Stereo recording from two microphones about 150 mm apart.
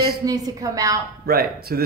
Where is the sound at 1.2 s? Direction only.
90° right.